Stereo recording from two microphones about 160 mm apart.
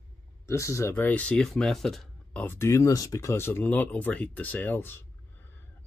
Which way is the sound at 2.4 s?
15° left (ahead or behind).